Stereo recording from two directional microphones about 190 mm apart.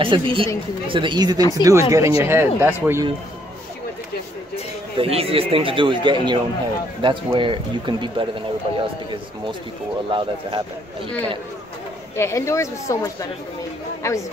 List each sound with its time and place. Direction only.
0.0 s speech: 25° right (ahead or behind); by 3.1 s 10° right (ahead or behind)
4.9 s speech: 30° right (ahead or behind)
12.2 s speech: 15° left (ahead or behind)